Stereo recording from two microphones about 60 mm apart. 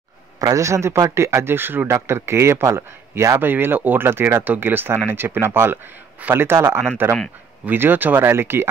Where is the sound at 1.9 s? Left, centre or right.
Right.